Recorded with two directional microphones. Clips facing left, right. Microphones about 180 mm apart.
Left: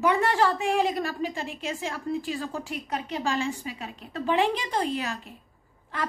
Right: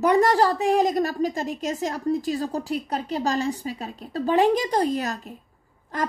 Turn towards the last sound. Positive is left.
turn(degrees=-40)  # may be behind; listen again after turning